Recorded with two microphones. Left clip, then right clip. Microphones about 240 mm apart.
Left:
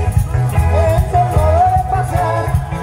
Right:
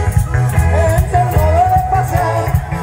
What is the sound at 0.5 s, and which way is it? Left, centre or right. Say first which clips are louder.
Music: even; right.